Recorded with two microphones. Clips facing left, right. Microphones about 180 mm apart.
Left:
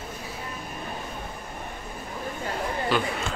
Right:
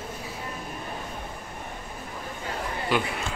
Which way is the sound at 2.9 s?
15° right (ahead or behind).